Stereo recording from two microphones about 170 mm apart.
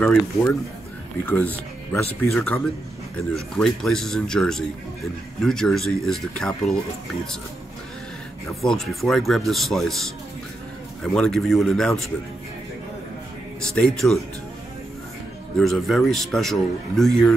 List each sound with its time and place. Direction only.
0.0 s a man's voice: 5° left (ahead or behind)
8.5 s a man's voice: centre (ahead or behind)
11.1 s a man's voice: centre (ahead or behind)
13.6 s a man's voice: 5° left (ahead or behind)
15.6 s a man's voice: centre (ahead or behind)